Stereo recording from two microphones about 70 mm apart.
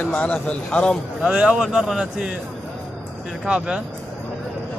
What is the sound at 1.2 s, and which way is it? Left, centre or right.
Speech, centre.